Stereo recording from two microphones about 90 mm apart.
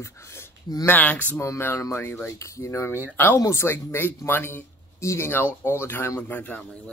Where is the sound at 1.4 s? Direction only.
30° left (ahead or behind).